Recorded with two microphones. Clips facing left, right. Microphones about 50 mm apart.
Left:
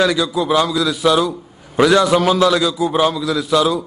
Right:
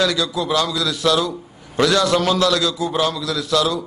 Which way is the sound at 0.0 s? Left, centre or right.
Centre.